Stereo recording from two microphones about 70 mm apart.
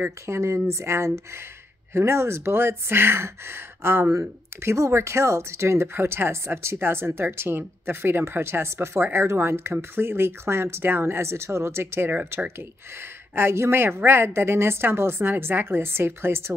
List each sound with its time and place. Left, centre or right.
0.3 s speech: right
13.3 s speech: right